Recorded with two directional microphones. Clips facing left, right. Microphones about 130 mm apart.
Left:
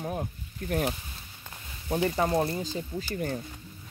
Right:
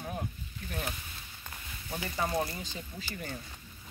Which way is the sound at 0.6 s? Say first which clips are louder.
Left 12 dB; 45° left (ahead or behind).